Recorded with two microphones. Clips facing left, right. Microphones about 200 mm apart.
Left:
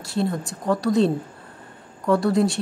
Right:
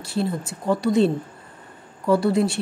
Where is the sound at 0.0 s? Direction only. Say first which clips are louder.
Left 1 dB; centre (ahead or behind).